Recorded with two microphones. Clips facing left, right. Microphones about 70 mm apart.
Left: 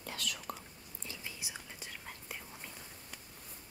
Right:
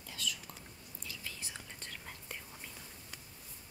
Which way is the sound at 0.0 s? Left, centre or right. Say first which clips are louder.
Left 2 dB; left.